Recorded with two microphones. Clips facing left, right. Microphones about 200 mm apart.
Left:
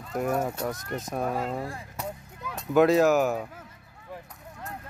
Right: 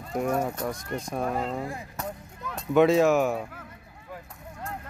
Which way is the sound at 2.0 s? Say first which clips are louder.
Even; 5° left (ahead or behind).